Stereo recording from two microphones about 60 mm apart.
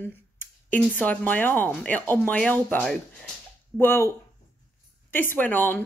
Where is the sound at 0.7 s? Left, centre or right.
Left.